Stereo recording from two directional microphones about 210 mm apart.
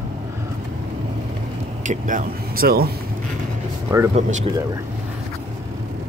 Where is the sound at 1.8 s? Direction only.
35° right (ahead or behind).